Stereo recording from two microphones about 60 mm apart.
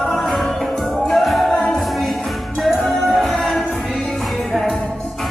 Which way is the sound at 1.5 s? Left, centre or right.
Centre.